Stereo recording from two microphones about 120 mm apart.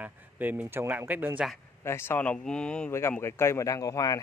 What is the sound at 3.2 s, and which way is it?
Speech, 20° left (ahead or behind).